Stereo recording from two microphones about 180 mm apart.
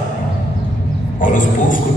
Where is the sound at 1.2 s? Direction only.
45° left (ahead or behind).